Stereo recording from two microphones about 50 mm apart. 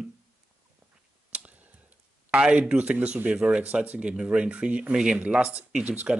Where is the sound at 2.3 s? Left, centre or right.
Right.